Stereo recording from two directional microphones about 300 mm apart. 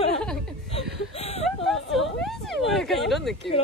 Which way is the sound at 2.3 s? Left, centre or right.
Centre.